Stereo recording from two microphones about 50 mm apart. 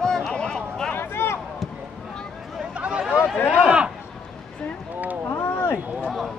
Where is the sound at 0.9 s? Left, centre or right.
Left.